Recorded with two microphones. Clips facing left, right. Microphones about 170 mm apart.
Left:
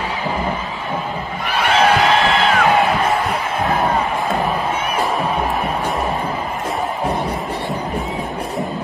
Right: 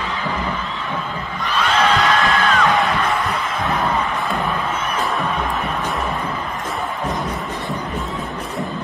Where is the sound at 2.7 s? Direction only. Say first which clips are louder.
Left 3 dB; 35° left (ahead or behind).